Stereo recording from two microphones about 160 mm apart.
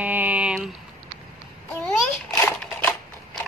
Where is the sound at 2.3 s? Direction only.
20° left (ahead or behind).